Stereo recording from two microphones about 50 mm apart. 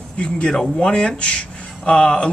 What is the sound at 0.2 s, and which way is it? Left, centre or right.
Speech, centre.